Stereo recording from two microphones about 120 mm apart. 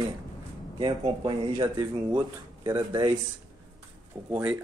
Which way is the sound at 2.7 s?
30° right (ahead or behind).